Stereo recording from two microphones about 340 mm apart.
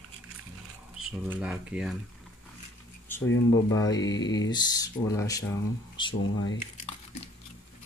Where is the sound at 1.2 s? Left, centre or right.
Centre.